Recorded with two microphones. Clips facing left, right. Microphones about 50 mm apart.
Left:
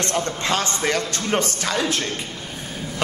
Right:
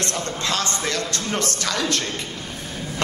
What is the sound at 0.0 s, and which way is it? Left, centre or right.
A man's voice, left.